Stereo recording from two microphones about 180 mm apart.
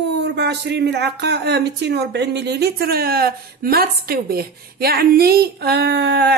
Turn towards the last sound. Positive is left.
turn(degrees=-65)  # may be behind; listen again after turning